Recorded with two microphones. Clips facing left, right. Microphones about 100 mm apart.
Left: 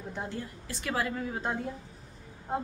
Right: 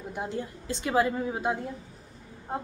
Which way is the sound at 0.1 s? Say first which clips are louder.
Right 5 dB; 15° right (ahead or behind).